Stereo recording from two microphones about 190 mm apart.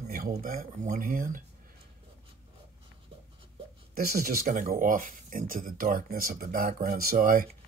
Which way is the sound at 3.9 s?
50° right (ahead or behind).